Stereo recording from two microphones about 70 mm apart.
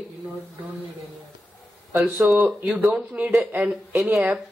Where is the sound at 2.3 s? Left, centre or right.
Right.